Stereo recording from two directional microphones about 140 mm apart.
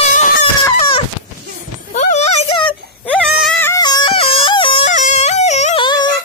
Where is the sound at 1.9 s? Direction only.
55° left (ahead or behind).